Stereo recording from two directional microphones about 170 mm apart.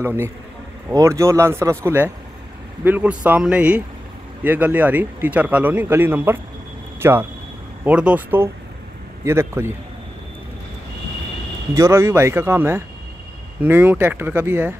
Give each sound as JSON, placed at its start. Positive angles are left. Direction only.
{"t": 0.0, "sound": "speech", "side_deg": -15}
{"t": 11.7, "sound": "speech", "side_deg": -15}